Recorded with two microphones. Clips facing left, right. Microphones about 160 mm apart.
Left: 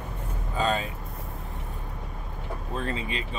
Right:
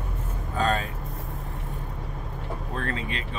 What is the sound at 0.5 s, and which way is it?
Speech, 5° left (ahead or behind).